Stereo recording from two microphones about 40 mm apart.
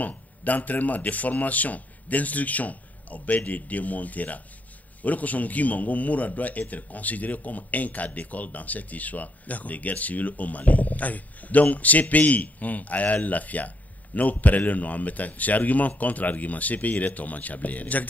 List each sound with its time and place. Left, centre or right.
0.0 s a man's voice: left